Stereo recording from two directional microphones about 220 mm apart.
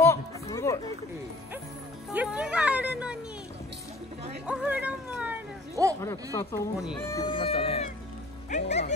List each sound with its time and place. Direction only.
0.0 s run: 15° left (ahead or behind)
2.1 s speech: 5° right (ahead or behind)
4.5 s a sound: 5° right (ahead or behind)
5.9 s speech: 15° left (ahead or behind); by 8.9 s 30° left (ahead or behind)